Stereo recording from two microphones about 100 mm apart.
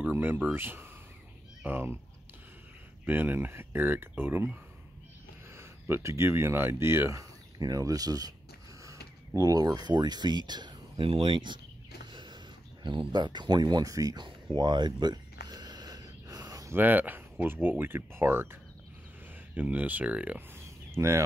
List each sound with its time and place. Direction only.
0.1 s speech: 20° right (ahead or behind)
3.1 s speech: 20° right (ahead or behind); by 11.6 s 50° right (ahead or behind)
12.1 s a sound: 50° right (ahead or behind)
16.7 s speech: 20° right (ahead or behind)